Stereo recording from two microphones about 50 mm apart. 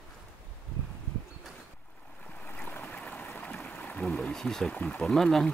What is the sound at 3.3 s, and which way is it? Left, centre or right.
Stream, left.